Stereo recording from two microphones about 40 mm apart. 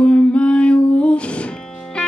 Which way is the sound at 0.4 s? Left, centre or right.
Left.